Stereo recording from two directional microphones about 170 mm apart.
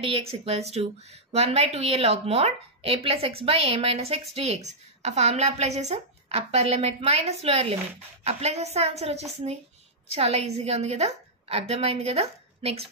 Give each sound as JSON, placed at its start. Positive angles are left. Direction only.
{"t": 0.0, "sound": "a woman's voice", "side_deg": -35}